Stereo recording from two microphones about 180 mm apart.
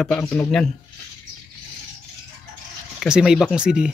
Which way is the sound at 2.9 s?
5° right (ahead or behind).